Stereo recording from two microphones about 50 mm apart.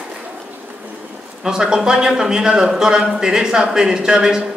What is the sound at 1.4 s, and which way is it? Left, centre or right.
A man's voice, centre.